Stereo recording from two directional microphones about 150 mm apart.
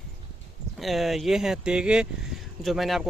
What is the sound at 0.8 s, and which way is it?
Speech, centre (ahead or behind).